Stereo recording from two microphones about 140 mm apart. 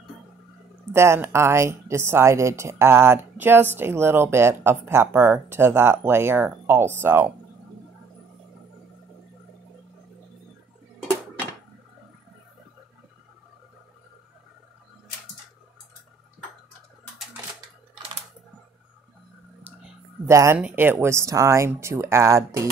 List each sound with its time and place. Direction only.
0.9 s a woman's voice: 20° right (ahead or behind)
20.2 s a woman's voice: 20° right (ahead or behind)